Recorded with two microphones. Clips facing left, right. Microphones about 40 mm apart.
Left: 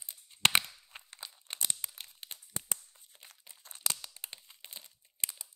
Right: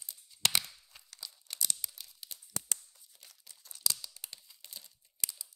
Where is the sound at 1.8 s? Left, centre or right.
Left.